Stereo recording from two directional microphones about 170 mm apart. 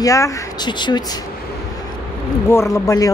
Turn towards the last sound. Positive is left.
turn(degrees=20)  # may be behind; listen again after turning